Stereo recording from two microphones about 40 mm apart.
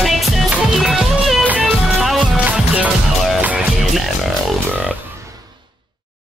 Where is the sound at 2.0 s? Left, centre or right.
Centre.